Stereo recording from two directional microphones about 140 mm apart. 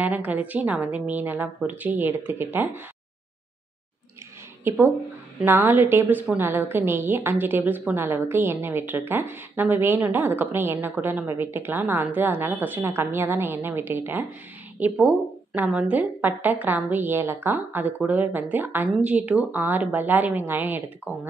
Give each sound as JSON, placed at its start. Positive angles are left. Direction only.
{"t": 0.0, "sound": "a woman's voice", "side_deg": -10}
{"t": 4.6, "sound": "a woman's voice", "side_deg": -20}